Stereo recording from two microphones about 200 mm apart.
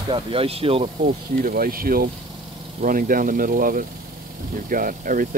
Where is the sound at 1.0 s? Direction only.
45° right (ahead or behind).